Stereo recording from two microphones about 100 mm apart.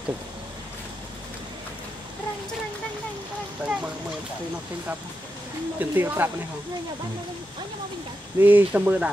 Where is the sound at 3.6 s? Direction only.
15° right (ahead or behind).